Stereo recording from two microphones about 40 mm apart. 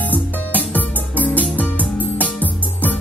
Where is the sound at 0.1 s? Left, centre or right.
Left.